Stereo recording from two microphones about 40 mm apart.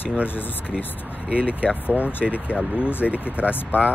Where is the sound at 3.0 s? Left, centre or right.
Centre.